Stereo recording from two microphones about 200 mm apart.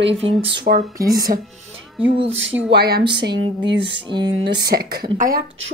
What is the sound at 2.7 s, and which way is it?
Speech, 55° right (ahead or behind).